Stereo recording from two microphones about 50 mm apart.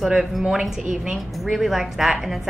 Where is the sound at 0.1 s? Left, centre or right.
Centre.